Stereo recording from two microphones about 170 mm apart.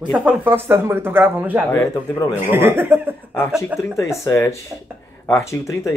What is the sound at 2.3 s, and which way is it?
Speech, 10° right (ahead or behind).